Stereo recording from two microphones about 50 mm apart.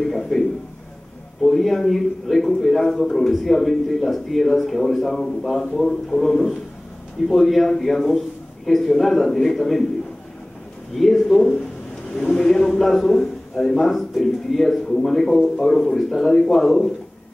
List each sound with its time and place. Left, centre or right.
0.0 s a sound: centre
1.4 s a man's voice: centre
11.0 s a man's voice: centre